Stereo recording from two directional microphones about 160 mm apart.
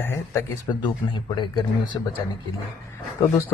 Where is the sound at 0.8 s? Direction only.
30° left (ahead or behind).